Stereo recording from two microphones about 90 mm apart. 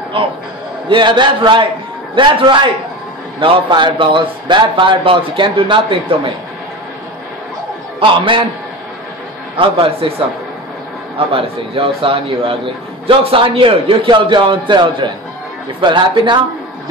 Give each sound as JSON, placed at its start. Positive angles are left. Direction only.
{"t": 0.2, "sound": "a man's voice", "side_deg": -80}
{"t": 0.8, "sound": "a man's voice", "side_deg": -60}
{"t": 3.3, "sound": "a man's voice", "side_deg": -80}
{"t": 3.6, "sound": "a man's voice", "side_deg": -60}
{"t": 8.0, "sound": "a man's voice", "side_deg": -70}
{"t": 9.6, "sound": "a man's voice", "side_deg": -80}